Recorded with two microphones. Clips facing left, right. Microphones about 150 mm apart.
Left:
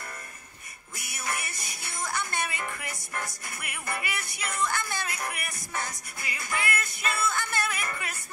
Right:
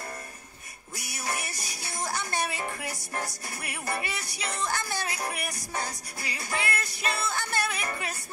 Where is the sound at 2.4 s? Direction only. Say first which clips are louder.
Right 2 dB; 30° right (ahead or behind).